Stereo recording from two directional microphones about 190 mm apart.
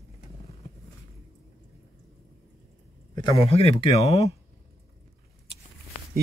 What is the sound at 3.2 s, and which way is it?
Speech, 25° left (ahead or behind).